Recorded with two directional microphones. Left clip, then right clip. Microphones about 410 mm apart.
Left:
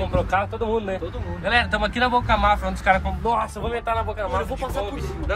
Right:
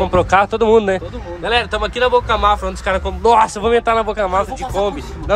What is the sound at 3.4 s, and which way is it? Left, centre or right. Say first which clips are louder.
Speech: right 11 dB; centre.